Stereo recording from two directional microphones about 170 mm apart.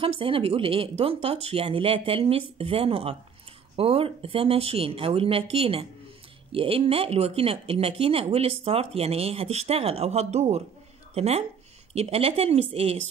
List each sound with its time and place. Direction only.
0.0 s speech: 30° right (ahead or behind)